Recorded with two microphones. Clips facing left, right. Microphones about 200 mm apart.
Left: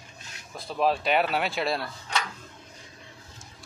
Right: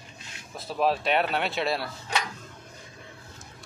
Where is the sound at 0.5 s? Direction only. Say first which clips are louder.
Even; centre (ahead or behind).